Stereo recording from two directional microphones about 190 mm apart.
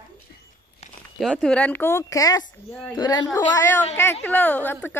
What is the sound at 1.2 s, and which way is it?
A woman's voice, 5° left (ahead or behind).